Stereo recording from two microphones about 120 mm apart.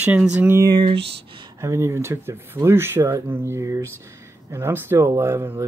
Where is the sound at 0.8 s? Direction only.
45° right (ahead or behind).